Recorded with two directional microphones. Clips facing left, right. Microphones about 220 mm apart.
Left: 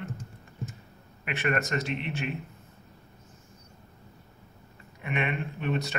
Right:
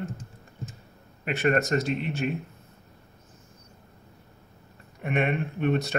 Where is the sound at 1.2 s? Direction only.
35° right (ahead or behind).